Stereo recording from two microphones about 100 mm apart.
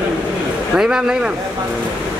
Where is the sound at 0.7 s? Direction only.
5° right (ahead or behind).